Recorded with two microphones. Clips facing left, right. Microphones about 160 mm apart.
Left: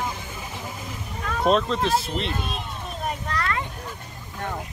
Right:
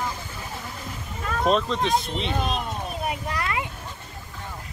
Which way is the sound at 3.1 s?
10° right (ahead or behind).